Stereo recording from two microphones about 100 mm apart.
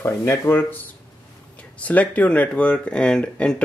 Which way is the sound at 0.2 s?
25° left (ahead or behind).